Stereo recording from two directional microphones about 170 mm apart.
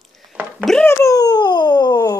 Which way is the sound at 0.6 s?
Centre (ahead or behind).